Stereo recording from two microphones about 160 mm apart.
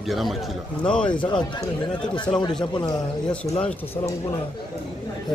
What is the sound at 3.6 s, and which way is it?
Speech, 10° left (ahead or behind).